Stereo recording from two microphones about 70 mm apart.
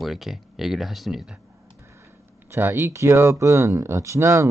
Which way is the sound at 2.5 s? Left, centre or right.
Right.